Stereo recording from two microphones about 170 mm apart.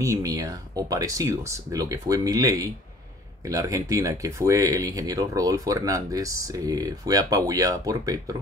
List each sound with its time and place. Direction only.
0.0 s speech: 20° right (ahead or behind)